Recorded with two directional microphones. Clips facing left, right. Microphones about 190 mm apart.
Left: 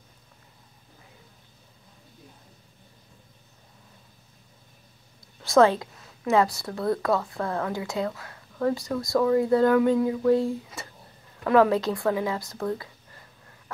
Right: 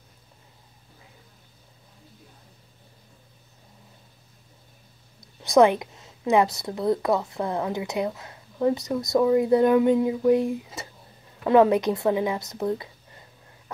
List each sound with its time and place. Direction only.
5.4 s a woman's voice: 15° right (ahead or behind)